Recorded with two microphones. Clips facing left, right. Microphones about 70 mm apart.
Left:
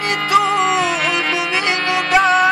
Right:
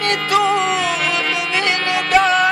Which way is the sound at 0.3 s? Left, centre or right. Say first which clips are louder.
Left 2 dB; centre.